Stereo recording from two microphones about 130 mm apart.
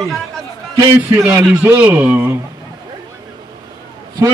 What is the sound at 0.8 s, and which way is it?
A man's voice, 20° right (ahead or behind).